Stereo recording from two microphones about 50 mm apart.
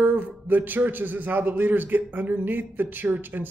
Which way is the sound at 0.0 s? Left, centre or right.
Right.